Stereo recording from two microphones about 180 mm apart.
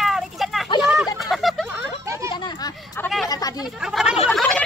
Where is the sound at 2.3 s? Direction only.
25° left (ahead or behind).